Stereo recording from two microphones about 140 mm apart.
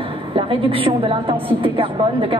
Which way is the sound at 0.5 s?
40° right (ahead or behind).